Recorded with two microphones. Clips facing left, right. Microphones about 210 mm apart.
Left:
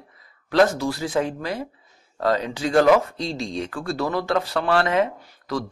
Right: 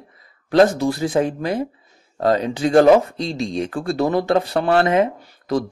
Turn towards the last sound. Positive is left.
turn(degrees=-20)  # may be behind; listen again after turning